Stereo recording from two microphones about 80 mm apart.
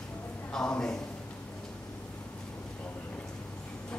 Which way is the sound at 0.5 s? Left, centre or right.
Centre.